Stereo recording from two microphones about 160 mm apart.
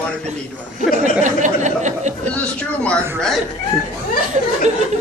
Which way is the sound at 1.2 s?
50° right (ahead or behind).